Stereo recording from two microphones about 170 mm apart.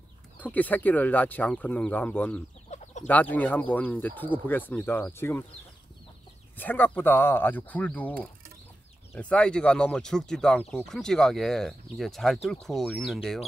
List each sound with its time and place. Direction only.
0.4 s speech: 10° left (ahead or behind)
2.7 s chicken: 45° left (ahead or behind)
3.1 s speech: 10° left (ahead or behind)
6.5 s speech: 10° left (ahead or behind)